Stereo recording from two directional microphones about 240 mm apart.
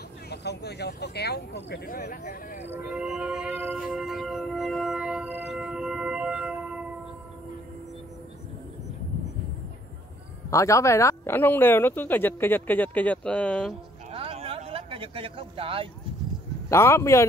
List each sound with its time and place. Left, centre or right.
0.3 s speech: left
2.7 s music: centre
10.5 s speech: centre
14.1 s a sound: right
16.6 s speech: centre